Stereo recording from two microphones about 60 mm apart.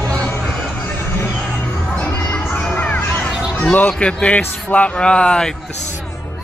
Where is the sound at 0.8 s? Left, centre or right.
Left.